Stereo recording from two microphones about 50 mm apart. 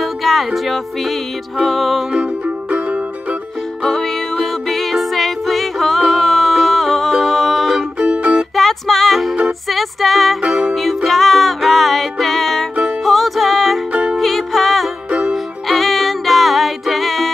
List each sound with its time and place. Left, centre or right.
0.0 s music: centre
2.1 s music: right
3.8 s music: centre
8.0 s music: right
8.5 s music: centre
15.0 s music: right
15.3 s music: centre